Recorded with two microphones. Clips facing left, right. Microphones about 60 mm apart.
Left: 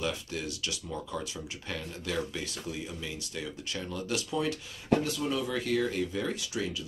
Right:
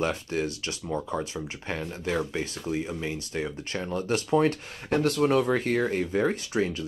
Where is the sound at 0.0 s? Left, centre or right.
Right.